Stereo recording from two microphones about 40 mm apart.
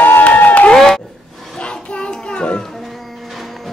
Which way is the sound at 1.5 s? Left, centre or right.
Left.